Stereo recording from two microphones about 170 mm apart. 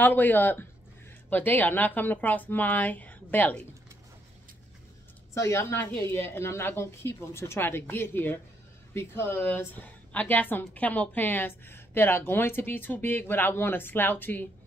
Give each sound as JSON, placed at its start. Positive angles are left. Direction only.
{"t": 0.0, "sound": "a woman's voice", "side_deg": 10}
{"t": 5.3, "sound": "a woman's voice", "side_deg": 15}